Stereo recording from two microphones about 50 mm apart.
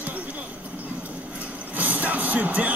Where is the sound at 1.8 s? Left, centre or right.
Right.